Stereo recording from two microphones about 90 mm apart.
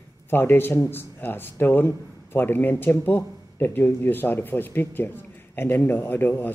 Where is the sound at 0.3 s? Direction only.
25° left (ahead or behind).